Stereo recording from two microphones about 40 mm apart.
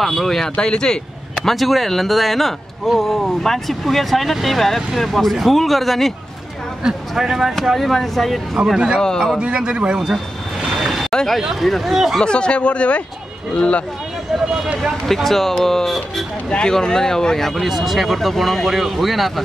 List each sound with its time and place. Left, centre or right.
0.0 s speech: centre
1.4 s speech: centre
6.8 s speech: centre
8.7 s a man's voice: centre
10.7 s vehicle: centre
11.1 s speech: centre
12.2 s speech: left
15.1 s speech: centre
16.4 s speech: left
17.5 s speech: centre